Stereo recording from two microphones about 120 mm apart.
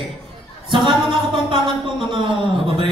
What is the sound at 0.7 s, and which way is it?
Music, 40° right (ahead or behind).